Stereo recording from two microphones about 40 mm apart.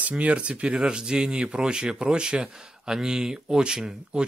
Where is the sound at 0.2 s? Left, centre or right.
Right.